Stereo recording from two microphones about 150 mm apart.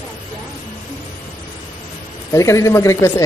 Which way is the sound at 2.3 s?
20° left (ahead or behind).